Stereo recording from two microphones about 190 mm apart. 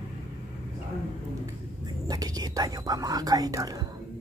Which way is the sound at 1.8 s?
20° right (ahead or behind).